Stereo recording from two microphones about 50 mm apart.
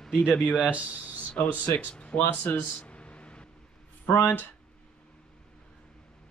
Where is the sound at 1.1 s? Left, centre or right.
Left.